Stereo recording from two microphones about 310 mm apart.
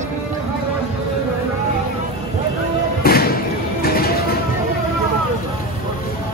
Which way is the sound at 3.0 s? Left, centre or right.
Left.